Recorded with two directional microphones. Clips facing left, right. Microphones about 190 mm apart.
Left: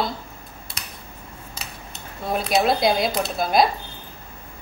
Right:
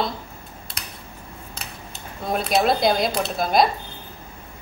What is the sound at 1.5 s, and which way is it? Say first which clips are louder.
Cutlery: even; centre (ahead or behind).